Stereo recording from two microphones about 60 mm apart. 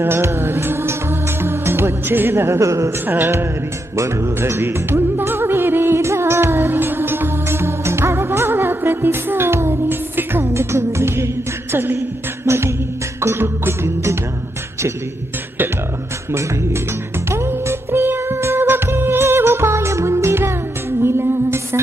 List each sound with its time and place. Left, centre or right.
0.0 s music: right
3.1 s music: right
10.4 s music: right
17.3 s music: right